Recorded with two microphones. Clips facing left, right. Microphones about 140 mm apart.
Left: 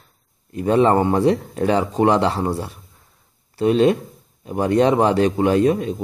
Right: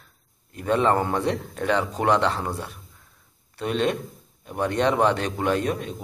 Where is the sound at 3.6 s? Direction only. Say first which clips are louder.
Left 9 dB; 35° left (ahead or behind).